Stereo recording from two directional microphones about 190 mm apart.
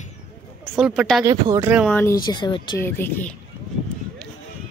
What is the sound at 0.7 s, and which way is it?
Speech, 5° right (ahead or behind).